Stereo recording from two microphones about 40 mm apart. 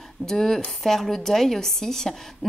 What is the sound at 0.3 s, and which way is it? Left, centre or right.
A woman's voice, centre.